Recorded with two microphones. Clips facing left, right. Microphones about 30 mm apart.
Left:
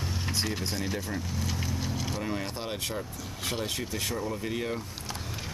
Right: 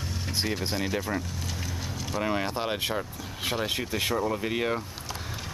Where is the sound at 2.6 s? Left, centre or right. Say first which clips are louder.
Right 5 dB; right.